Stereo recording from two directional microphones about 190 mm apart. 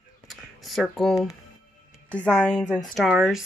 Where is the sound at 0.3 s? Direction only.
Centre (ahead or behind).